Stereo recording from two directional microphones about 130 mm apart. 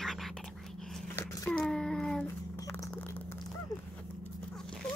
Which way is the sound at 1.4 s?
5° left (ahead or behind).